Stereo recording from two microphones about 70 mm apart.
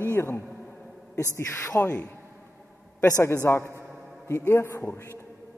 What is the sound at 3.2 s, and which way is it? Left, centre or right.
Speech, left.